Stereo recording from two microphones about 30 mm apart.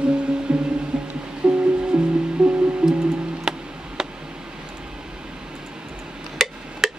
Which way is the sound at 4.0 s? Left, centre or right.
Right.